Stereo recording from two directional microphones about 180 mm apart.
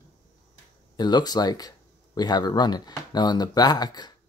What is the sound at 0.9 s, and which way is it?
Speech, 25° left (ahead or behind).